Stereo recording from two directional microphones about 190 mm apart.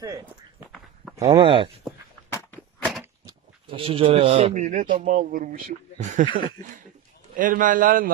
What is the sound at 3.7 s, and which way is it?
Speech, 30° right (ahead or behind).